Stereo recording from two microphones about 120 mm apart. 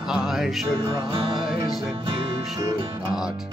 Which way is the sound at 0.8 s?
40° right (ahead or behind).